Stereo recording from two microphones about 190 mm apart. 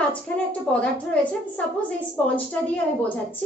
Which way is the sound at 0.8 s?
5° left (ahead or behind).